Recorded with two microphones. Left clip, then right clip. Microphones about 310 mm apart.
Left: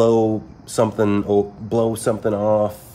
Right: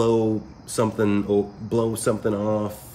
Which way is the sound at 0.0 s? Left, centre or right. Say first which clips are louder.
Left 5 dB; centre.